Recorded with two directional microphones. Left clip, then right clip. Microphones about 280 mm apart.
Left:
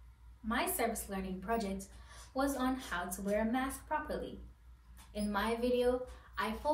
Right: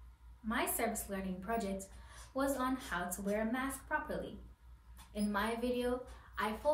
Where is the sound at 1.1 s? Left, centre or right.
Centre.